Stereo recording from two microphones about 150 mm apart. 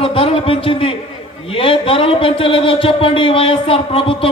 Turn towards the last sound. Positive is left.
turn(degrees=35)  # may be behind; listen again after turning